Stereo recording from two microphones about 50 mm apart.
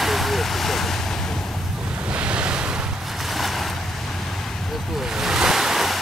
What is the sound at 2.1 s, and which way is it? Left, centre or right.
Waves, right.